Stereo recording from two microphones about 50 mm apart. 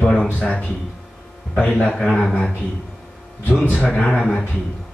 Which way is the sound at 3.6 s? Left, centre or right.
Left.